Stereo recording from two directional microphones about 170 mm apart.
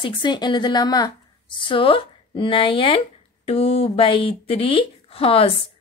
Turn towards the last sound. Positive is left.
turn(degrees=35)  # may be behind; listen again after turning